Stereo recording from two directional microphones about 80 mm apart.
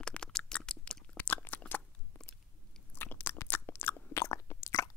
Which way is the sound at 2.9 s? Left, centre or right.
Left.